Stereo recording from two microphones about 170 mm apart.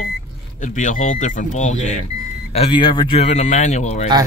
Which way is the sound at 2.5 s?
35° left (ahead or behind).